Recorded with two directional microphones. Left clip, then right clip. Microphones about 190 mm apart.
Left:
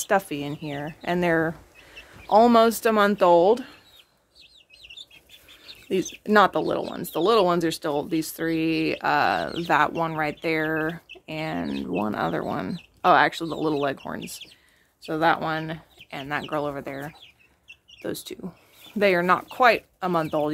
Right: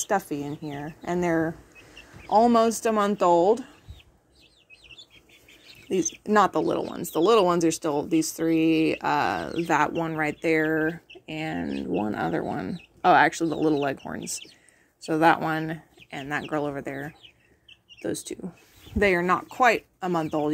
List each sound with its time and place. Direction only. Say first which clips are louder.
0.0 s speech: left 3 dB; 10° left (ahead or behind)
6.2 s speech: left 3 dB; 5° left (ahead or behind)
13.0 s speech: even; 5° right (ahead or behind)
15.0 s speech: right 2 dB; 15° right (ahead or behind); by 20.5 s 5° left (ahead or behind)